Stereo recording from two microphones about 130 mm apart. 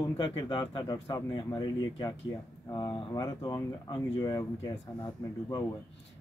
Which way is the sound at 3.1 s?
25° left (ahead or behind).